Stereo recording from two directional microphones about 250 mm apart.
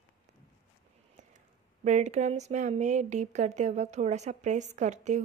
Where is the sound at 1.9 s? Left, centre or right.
Right.